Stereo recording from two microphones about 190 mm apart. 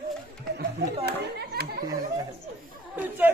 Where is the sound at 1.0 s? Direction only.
55° right (ahead or behind).